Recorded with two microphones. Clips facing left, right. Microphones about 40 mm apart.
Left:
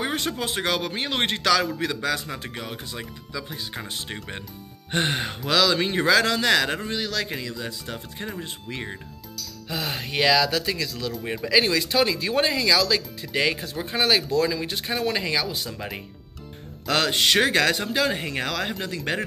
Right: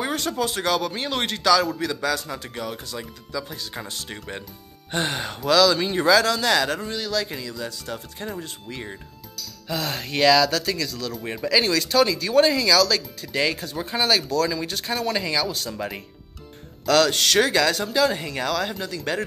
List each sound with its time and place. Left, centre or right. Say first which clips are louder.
0.0 s speech: right 2 dB; left
4.9 s speech: left 1 dB; left
9.7 s speech: right 2 dB; centre
13.9 s speech: even; left
16.8 s speech: right 3 dB; left
17.5 s speech: even; left